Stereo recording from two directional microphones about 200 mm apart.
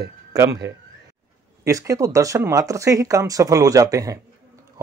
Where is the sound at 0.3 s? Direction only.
15° right (ahead or behind).